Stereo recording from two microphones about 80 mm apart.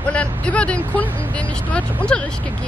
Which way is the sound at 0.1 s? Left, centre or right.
Centre.